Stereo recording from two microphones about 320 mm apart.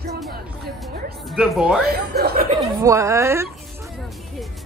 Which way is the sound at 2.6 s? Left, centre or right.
Centre.